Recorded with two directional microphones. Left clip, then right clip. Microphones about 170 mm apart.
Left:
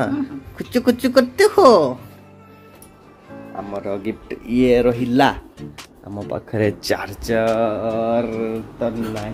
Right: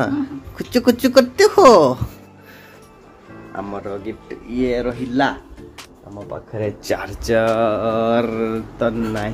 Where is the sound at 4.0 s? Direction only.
45° left (ahead or behind).